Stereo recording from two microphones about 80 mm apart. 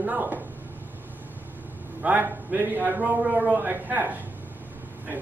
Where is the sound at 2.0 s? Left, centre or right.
Centre.